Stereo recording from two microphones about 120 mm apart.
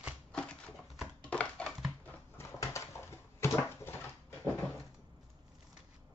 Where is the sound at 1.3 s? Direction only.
10° left (ahead or behind).